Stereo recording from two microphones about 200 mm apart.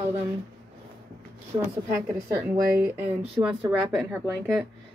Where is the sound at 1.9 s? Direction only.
15° right (ahead or behind).